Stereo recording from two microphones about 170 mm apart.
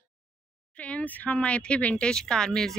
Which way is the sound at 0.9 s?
10° left (ahead or behind).